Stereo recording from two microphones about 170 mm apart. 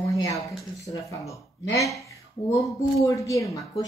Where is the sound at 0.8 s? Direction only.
20° left (ahead or behind).